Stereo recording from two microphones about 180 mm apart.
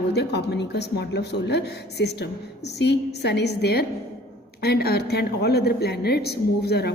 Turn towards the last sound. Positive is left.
turn(degrees=65)  # may be behind; listen again after turning